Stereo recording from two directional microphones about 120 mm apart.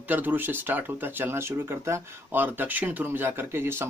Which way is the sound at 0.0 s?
15° right (ahead or behind).